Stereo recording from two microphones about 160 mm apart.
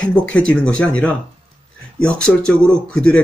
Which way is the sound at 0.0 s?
5° left (ahead or behind).